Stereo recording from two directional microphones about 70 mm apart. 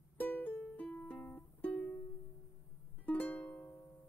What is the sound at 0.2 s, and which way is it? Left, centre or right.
Music, left.